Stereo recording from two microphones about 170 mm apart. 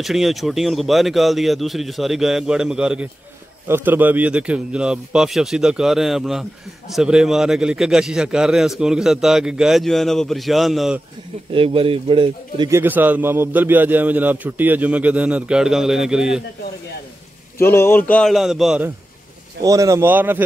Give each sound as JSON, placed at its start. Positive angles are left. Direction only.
{"t": 0.0, "sound": "a man's voice", "side_deg": 0}
{"t": 11.5, "sound": "speech", "side_deg": -30}
{"t": 12.6, "sound": "a man's voice", "side_deg": -15}
{"t": 17.6, "sound": "a man's voice", "side_deg": 15}
{"t": 19.6, "sound": "a man's voice", "side_deg": -20}